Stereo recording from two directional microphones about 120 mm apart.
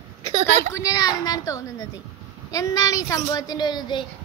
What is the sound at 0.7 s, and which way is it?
A woman's voice, 30° left (ahead or behind).